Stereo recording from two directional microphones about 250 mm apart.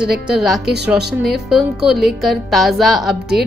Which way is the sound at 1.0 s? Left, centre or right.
Right.